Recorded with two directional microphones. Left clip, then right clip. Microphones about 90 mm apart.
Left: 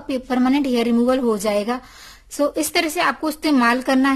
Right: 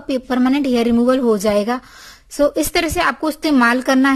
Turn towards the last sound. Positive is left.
turn(degrees=-50)  # may be behind; listen again after turning